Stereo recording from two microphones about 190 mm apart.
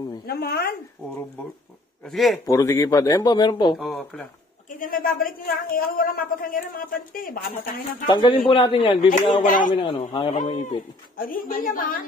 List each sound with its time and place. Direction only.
0.3 s a woman's voice: 55° left (ahead or behind)
2.0 s speech: centre (ahead or behind)
2.4 s speech: 15° left (ahead or behind)
3.7 s speech: centre (ahead or behind)
4.6 s a woman's voice: 45° left (ahead or behind)
8.1 s a man's voice: 25° left (ahead or behind)
11.1 s a woman's voice: 50° left (ahead or behind)